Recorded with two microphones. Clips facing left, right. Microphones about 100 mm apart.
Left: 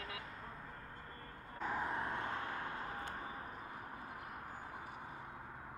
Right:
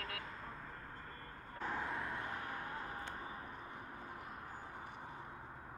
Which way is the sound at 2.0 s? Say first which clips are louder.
Left 2 dB; 25° left (ahead or behind).